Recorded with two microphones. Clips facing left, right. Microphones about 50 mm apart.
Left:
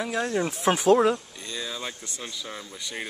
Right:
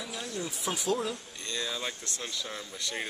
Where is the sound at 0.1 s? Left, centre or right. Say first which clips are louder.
Left 11 dB; left.